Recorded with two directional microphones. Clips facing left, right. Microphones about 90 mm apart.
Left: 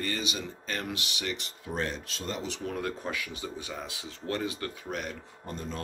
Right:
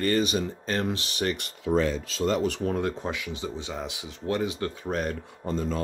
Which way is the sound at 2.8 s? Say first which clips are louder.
Right 4 dB; 25° right (ahead or behind).